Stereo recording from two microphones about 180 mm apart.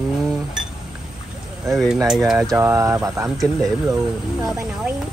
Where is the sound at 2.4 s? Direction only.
15° right (ahead or behind).